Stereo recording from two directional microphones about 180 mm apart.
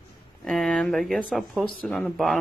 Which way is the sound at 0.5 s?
Centre (ahead or behind).